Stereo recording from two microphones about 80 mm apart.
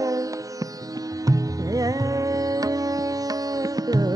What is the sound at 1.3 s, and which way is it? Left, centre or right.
Music, right.